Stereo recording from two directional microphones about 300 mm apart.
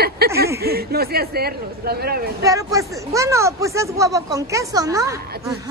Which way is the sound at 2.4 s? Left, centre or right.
Centre.